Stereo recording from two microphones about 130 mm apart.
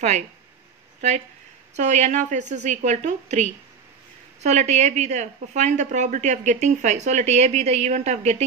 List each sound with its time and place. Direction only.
1.8 s a woman's voice: 65° right (ahead or behind)